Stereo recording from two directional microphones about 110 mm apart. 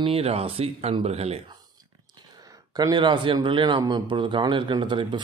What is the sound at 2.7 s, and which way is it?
A man's voice, 40° right (ahead or behind).